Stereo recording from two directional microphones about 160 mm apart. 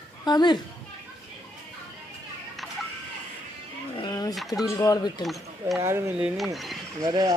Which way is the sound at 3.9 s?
25° left (ahead or behind).